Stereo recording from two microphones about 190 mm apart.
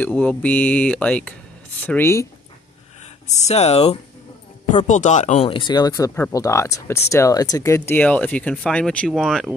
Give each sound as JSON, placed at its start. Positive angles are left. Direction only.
{"t": 0.0, "sound": "speech", "side_deg": 10}
{"t": 3.3, "sound": "speech", "side_deg": 35}